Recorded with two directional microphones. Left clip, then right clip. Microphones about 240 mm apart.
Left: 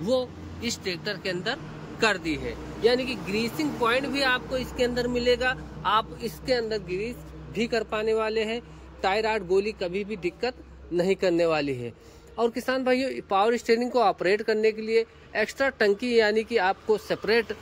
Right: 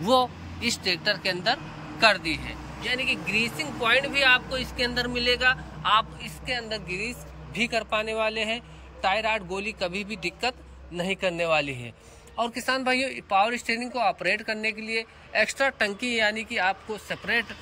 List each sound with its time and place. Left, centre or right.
0.0 s speech: centre; by 6.8 s left
6.9 s a man's voice: centre